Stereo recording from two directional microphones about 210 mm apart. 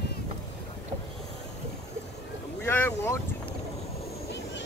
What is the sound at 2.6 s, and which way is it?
Boat, 10° left (ahead or behind).